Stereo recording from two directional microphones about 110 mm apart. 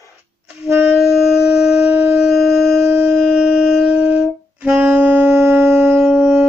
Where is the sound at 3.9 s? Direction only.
10° right (ahead or behind).